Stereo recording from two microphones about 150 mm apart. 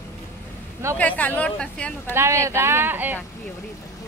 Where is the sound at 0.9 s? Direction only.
10° left (ahead or behind).